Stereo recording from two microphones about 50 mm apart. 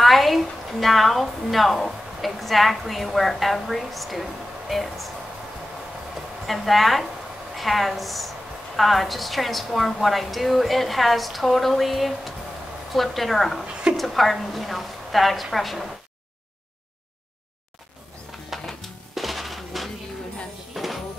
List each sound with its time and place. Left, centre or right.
0.0 s a woman's voice: centre
6.4 s a woman's voice: centre
13.7 s a sound: centre
13.9 s a woman's voice: centre
18.5 s music: centre